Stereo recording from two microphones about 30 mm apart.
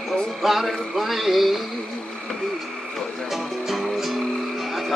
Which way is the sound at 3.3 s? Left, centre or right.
Centre.